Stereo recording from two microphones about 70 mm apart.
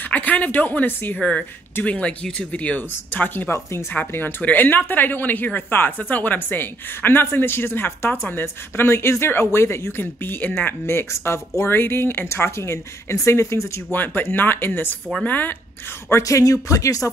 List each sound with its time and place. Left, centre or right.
0.0 s speech: left
13.9 s speech: left
16.1 s speech: left